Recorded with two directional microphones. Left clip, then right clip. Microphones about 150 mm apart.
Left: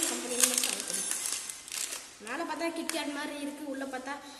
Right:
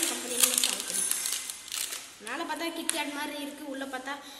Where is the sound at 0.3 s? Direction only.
20° left (ahead or behind).